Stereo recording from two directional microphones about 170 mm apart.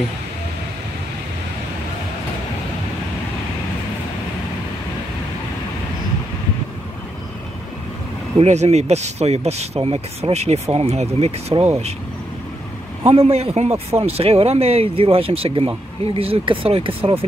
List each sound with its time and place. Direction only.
8.4 s speech: 40° right (ahead or behind)
13.1 s speech: 35° right (ahead or behind)